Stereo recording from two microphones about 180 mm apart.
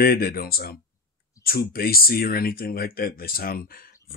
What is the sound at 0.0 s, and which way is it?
Speech, 55° left (ahead or behind).